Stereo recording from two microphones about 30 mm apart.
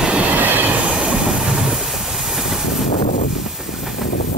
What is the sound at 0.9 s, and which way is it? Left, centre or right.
Train, right.